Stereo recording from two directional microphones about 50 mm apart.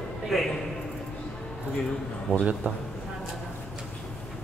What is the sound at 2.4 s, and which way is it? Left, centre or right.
Speech, right.